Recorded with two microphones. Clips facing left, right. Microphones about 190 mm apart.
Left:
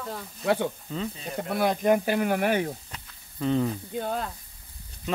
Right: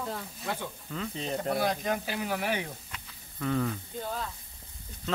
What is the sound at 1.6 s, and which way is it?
Speech, 55° left (ahead or behind).